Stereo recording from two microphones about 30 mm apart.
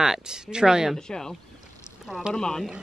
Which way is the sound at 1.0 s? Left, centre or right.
Left.